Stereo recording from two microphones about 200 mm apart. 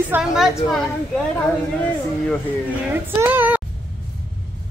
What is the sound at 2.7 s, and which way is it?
Child singing, 10° right (ahead or behind).